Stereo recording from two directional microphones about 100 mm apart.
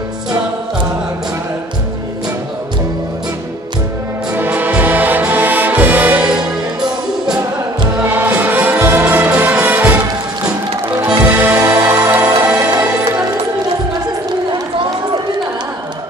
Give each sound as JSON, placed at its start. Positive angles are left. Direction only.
{"t": 4.4, "sound": "music", "side_deg": -15}
{"t": 8.0, "sound": "music", "side_deg": -15}
{"t": 11.1, "sound": "music", "side_deg": -15}
{"t": 12.4, "sound": "music", "side_deg": -10}